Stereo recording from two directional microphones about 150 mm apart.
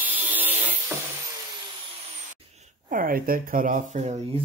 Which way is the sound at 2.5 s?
55° right (ahead or behind).